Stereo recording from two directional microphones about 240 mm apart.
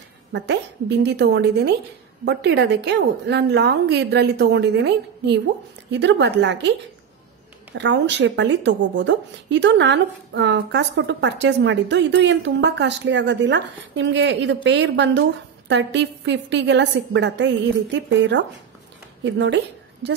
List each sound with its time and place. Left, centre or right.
0.3 s a woman's voice: right
7.7 s a woman's voice: right